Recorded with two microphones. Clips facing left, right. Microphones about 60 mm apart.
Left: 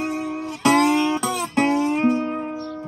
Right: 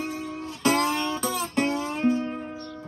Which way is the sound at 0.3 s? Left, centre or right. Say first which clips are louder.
Left 6 dB; centre.